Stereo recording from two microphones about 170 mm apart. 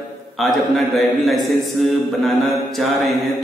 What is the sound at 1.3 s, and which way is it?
Music, centre (ahead or behind).